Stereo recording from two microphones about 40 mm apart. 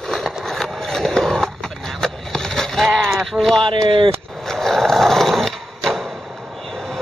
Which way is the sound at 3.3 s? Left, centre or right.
Centre.